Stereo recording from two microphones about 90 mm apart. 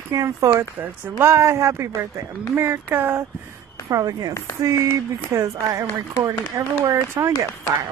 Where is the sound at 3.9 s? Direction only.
45° right (ahead or behind).